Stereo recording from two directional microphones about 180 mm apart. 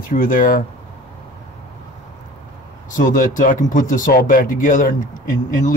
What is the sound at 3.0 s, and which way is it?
Speech, 45° left (ahead or behind).